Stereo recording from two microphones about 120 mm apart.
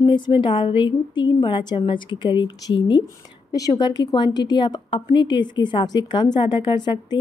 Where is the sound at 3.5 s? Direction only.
30° left (ahead or behind).